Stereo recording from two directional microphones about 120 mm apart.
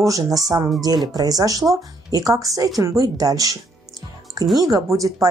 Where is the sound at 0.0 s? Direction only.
30° right (ahead or behind).